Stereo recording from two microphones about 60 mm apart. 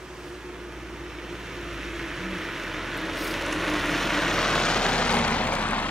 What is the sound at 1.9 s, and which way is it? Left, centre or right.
Vehicle, centre.